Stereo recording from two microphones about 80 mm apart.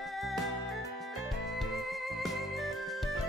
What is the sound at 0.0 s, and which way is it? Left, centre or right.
Music, centre.